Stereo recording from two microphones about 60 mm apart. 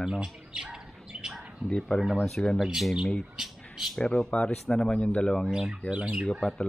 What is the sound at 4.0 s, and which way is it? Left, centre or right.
Speech, centre.